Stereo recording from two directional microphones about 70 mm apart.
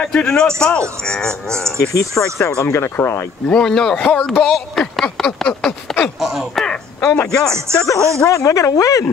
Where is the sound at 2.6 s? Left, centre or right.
Left.